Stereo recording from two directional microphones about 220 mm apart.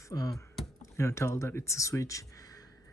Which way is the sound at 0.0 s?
15° left (ahead or behind).